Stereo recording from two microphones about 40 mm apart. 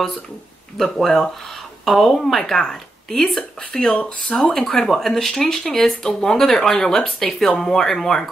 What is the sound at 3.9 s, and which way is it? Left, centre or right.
Speech, left.